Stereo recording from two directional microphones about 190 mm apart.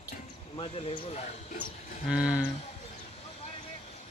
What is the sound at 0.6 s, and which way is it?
Speech, 30° left (ahead or behind).